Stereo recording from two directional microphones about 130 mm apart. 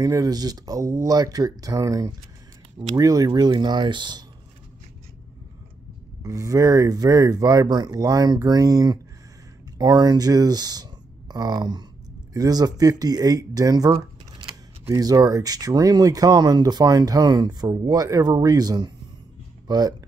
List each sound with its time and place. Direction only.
0.0 s speech: 30° right (ahead or behind)
6.2 s speech: 25° right (ahead or behind)